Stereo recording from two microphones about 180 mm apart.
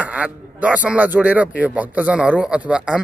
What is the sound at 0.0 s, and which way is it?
Speech, 10° right (ahead or behind).